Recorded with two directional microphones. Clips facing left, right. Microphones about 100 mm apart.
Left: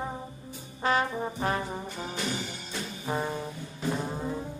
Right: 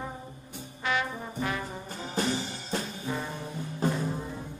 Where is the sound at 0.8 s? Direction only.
35° left (ahead or behind).